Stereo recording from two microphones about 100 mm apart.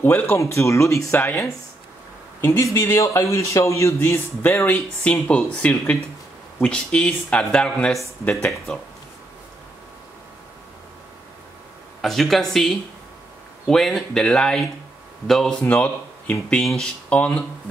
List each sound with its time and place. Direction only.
0.0 s a man's voice: 20° left (ahead or behind)
4.0 s a man's voice: 20° left (ahead or behind)
12.0 s speech: 5° left (ahead or behind)
15.6 s speech: 15° left (ahead or behind)